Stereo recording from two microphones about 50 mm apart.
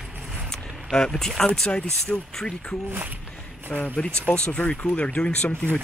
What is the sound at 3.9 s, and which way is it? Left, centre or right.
Speech, left.